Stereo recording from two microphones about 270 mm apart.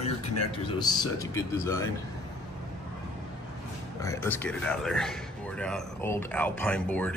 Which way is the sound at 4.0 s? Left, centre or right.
Centre.